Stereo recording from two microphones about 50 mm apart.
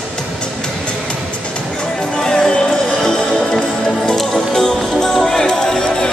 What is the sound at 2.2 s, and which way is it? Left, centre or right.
Music, centre.